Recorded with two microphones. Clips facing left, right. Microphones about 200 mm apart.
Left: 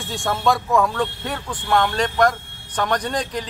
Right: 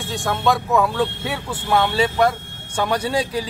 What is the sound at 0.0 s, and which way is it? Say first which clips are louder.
Speech: even; centre (ahead or behind).